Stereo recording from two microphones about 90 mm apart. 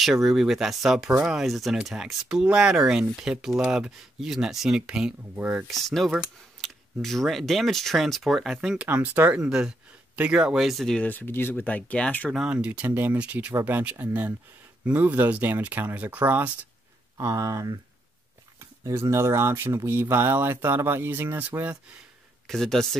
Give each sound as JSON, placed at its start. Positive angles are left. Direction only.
{"t": 0.0, "sound": "speech", "side_deg": 0}
{"t": 5.7, "sound": "speech", "side_deg": 0}
{"t": 8.8, "sound": "speech", "side_deg": -20}
{"t": 9.4, "sound": "speech", "side_deg": -10}
{"t": 11.0, "sound": "speech", "side_deg": 20}
{"t": 12.4, "sound": "speech", "side_deg": -10}
{"t": 17.2, "sound": "speech", "side_deg": -35}
{"t": 18.9, "sound": "speech", "side_deg": -30}
{"t": 22.5, "sound": "speech", "side_deg": 5}